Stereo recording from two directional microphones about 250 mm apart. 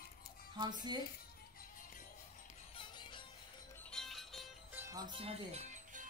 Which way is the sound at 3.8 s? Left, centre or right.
Centre.